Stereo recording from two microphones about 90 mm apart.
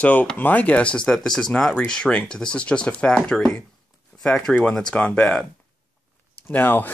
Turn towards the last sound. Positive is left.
turn(degrees=20)  # may be behind; listen again after turning